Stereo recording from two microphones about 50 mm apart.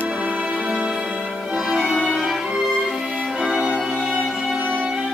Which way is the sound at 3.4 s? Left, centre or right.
Centre.